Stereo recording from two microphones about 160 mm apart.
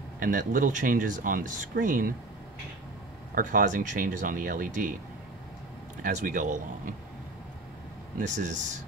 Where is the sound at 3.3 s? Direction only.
55° right (ahead or behind).